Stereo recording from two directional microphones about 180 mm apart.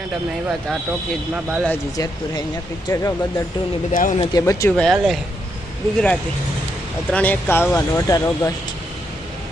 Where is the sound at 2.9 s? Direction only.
15° left (ahead or behind).